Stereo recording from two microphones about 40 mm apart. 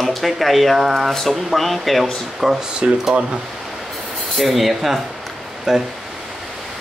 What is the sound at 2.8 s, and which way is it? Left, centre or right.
Speech, right.